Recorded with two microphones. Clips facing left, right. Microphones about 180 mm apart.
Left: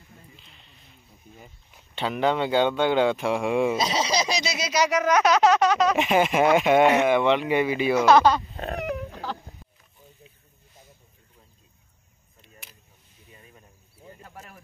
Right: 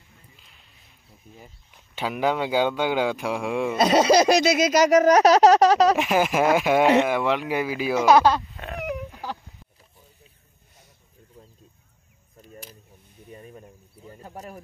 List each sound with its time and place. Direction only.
0.4 s a sound: 5° right (ahead or behind)
2.0 s speech: 5° right (ahead or behind)
3.7 s speech: 55° right (ahead or behind); by 5.9 s 35° right (ahead or behind)
5.9 s speech: centre (ahead or behind)
8.5 s dog: 40° left (ahead or behind)
13.3 s a sound: 40° right (ahead or behind)